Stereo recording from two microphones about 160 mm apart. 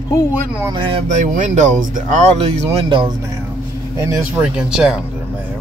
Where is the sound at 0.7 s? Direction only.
30° right (ahead or behind).